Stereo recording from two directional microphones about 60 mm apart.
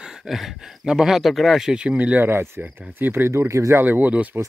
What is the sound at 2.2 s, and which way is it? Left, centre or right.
Speech, right.